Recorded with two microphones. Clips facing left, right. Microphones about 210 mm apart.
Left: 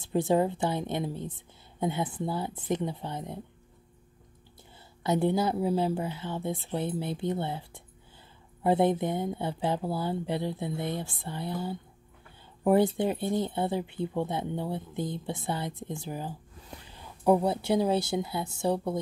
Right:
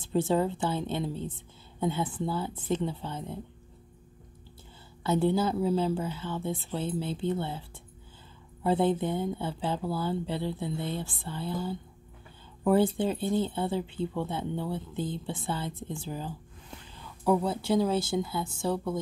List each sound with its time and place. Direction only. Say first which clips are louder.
0.1 s a woman's voice: left 1 dB; 20° left (ahead or behind)
5.0 s speech: even; 20° left (ahead or behind)
8.6 s speech: left 1 dB; 20° left (ahead or behind)